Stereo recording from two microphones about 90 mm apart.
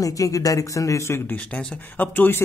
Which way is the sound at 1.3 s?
15° left (ahead or behind).